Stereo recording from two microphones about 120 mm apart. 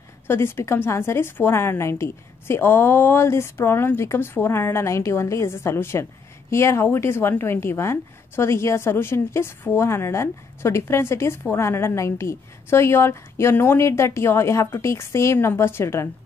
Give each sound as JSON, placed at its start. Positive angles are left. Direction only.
{"t": 0.3, "sound": "a woman's voice", "side_deg": 20}